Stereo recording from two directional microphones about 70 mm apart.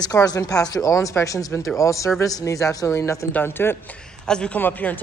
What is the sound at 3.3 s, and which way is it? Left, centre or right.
Speech, left.